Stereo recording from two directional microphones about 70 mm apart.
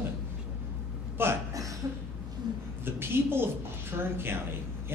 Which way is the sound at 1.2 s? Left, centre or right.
Right.